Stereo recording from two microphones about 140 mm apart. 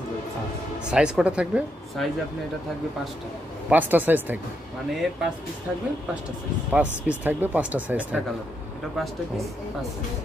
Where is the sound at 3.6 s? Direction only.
10° right (ahead or behind).